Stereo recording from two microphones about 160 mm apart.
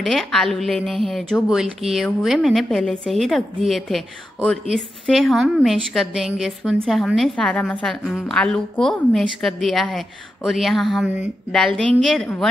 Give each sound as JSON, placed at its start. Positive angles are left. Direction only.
{"t": 0.0, "sound": "a woman's voice", "side_deg": 0}